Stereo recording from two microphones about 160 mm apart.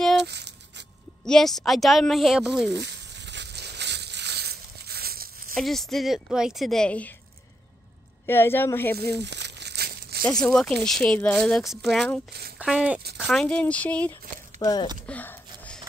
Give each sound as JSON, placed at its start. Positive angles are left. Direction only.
{"t": 0.2, "sound": "a sound", "side_deg": -90}
{"t": 1.2, "sound": "speech", "side_deg": 5}
{"t": 2.7, "sound": "a sound", "side_deg": -90}
{"t": 5.5, "sound": "speech", "side_deg": 0}
{"t": 8.3, "sound": "speech", "side_deg": 15}
{"t": 9.2, "sound": "crumpling", "side_deg": -90}
{"t": 10.2, "sound": "speech", "side_deg": 5}
{"t": 12.3, "sound": "speech", "side_deg": -80}
{"t": 12.5, "sound": "speech", "side_deg": -5}
{"t": 14.6, "sound": "speech", "side_deg": 25}
{"t": 15.0, "sound": "a sound", "side_deg": 10}